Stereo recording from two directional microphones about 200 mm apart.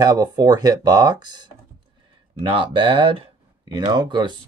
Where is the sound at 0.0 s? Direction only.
20° right (ahead or behind).